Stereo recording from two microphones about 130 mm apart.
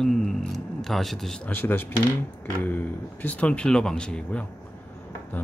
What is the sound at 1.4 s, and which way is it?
Speech, 15° left (ahead or behind).